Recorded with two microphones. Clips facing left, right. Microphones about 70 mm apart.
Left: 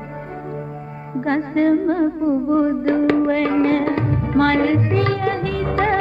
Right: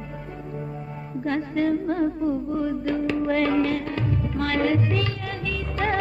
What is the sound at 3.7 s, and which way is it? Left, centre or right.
Music, left.